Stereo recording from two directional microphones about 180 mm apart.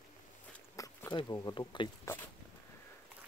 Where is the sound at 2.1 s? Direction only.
15° left (ahead or behind).